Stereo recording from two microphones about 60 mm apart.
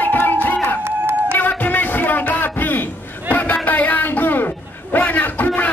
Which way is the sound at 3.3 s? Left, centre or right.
Left.